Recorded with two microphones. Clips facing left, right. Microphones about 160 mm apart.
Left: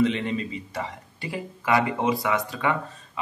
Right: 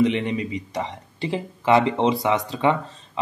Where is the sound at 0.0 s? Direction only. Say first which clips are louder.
Right 3 dB; 20° right (ahead or behind).